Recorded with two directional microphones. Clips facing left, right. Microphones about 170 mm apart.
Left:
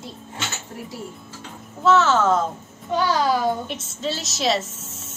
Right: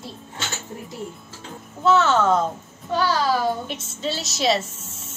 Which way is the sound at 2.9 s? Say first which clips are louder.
Left 1 dB; 20° left (ahead or behind).